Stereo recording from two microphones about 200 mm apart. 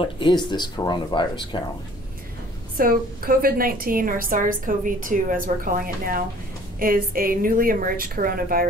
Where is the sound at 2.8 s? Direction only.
45° right (ahead or behind).